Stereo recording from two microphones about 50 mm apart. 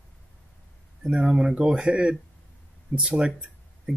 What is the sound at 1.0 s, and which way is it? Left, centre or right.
Speech, centre.